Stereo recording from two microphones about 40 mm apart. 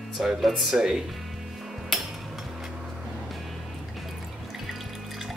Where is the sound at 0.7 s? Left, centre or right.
Centre.